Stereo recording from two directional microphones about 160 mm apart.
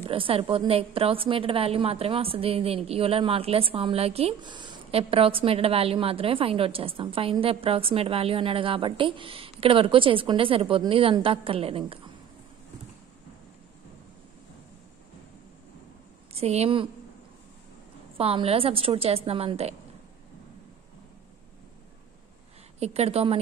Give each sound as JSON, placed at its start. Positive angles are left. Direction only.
{"t": 0.1, "sound": "a woman's voice", "side_deg": -35}
{"t": 16.3, "sound": "a woman's voice", "side_deg": -40}
{"t": 18.1, "sound": "a woman's voice", "side_deg": -35}
{"t": 22.8, "sound": "a woman's voice", "side_deg": -40}